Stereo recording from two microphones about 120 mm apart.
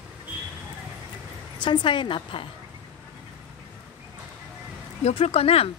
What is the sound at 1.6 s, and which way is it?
Speech, 40° left (ahead or behind).